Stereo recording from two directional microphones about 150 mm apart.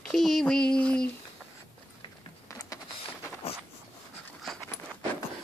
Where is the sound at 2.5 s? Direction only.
20° left (ahead or behind).